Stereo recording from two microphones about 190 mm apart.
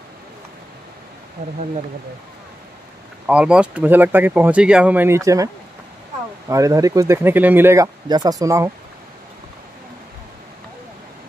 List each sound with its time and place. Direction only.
1.4 s speech: 40° right (ahead or behind)
3.3 s speech: 5° right (ahead or behind)
6.5 s speech: 15° right (ahead or behind)